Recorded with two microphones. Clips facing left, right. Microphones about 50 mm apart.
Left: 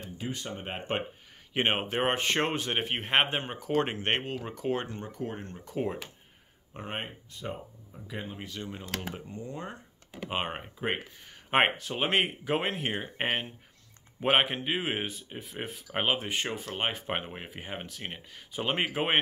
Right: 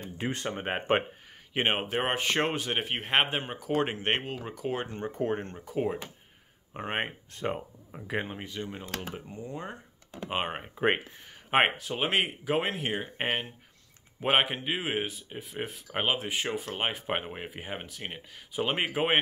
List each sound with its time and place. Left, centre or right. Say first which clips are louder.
0.0 s speech: right 4 dB; right
1.5 s speech: even; centre
4.8 s speech: right 6 dB; right
5.7 s speech: right 2 dB; centre
6.8 s speech: right 5 dB; right
7.3 s speech: right 6 dB; right
8.4 s speech: right 2 dB; centre